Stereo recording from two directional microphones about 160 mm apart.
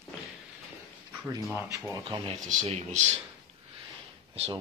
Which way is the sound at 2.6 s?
45° right (ahead or behind).